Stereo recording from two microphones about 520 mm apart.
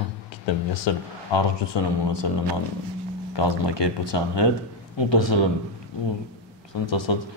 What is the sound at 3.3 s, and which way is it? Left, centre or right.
Speech, left.